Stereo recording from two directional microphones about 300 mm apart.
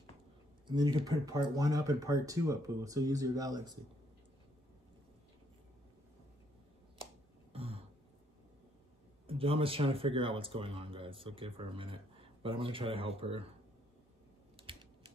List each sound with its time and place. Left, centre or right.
0.7 s speech: centre
7.5 s throat clearing: centre
9.3 s speech: centre
14.6 s typing: centre